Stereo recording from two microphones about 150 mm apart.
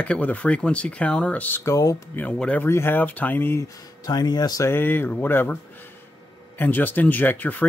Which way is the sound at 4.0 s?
25° left (ahead or behind).